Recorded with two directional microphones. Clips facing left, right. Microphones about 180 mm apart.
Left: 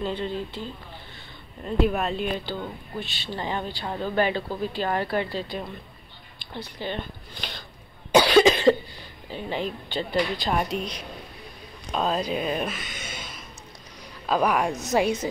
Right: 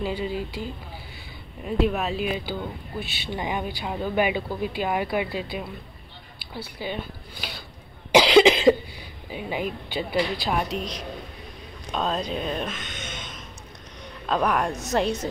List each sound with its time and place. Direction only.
0.0 s speech: 10° right (ahead or behind)
8.2 s cough: 15° right (ahead or behind)
9.3 s speech: 10° right (ahead or behind)